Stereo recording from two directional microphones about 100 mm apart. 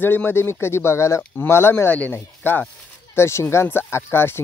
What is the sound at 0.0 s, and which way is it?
Speech, 20° left (ahead or behind).